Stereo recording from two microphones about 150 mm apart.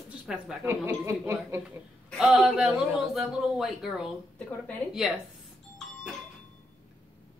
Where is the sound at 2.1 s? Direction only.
Centre (ahead or behind).